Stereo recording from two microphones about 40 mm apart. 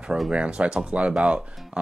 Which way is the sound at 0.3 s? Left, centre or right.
Right.